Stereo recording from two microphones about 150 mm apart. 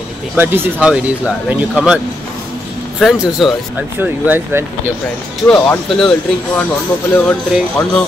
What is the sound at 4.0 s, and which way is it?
Speech, 15° right (ahead or behind).